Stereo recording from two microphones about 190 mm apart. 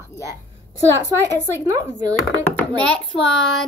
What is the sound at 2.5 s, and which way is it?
Speech, 5° left (ahead or behind).